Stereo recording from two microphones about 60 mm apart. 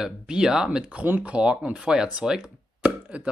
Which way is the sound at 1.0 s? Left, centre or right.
Right.